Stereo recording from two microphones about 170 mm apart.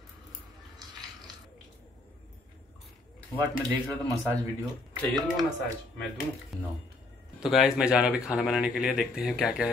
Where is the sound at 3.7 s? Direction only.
5° left (ahead or behind).